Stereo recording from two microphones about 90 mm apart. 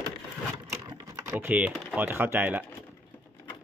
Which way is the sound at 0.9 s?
40° right (ahead or behind).